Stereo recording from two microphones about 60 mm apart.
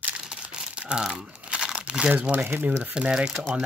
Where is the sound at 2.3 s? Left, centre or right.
Right.